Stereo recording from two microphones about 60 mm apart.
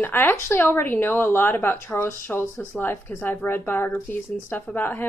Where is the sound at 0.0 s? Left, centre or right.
Left.